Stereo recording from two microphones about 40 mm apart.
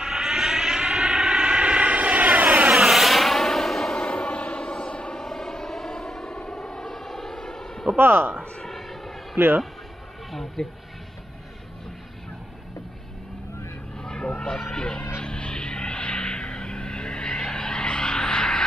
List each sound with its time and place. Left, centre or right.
0.0 s vehicle: centre; by 2.7 s right
2.7 s vehicle: centre
3.9 s vehicle: centre
4.3 s vehicle: left
5.1 s vehicle: centre
6.5 s civil defense siren: centre
7.9 s speech: right
8.6 s vehicle: centre
10.3 s speech: centre
13.9 s vehicle: centre